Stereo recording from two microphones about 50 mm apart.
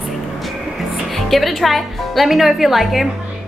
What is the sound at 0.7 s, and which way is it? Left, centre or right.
A woman's voice, centre.